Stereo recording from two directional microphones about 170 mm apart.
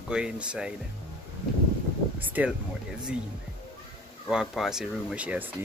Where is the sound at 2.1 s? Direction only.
10° right (ahead or behind).